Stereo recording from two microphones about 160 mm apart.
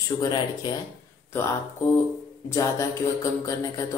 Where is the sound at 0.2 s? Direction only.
25° left (ahead or behind).